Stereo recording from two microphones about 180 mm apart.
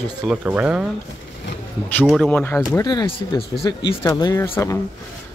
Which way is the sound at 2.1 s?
5° left (ahead or behind).